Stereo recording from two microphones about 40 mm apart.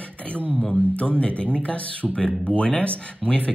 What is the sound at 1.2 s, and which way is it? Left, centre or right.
Speech, left.